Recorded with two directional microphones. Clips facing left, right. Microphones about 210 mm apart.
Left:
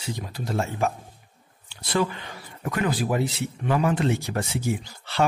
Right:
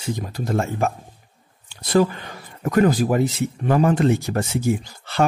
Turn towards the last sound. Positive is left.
turn(degrees=-45)  # may be behind; listen again after turning